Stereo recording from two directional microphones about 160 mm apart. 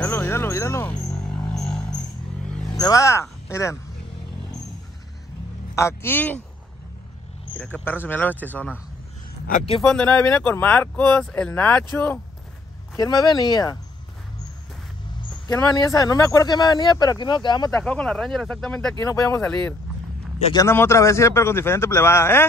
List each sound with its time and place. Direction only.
0.0 s a sound: 10° left (ahead or behind)
1.0 s a sound: 5° left (ahead or behind)
2.4 s vehicle: 5° left (ahead or behind)
2.8 s speech: 20° left (ahead or behind)
5.8 s speech: 15° left (ahead or behind)
7.5 s speech: 10° left (ahead or behind)
9.8 s speech: 5° left (ahead or behind)
12.9 s speech: 25° left (ahead or behind)
15.4 s speech: 25° left (ahead or behind)
17.7 s speech: 5° left (ahead or behind)
18.9 s speech: 20° left (ahead or behind)
19.4 s speech: 5° left (ahead or behind)